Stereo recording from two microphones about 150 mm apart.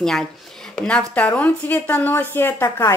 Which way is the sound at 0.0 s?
5° left (ahead or behind).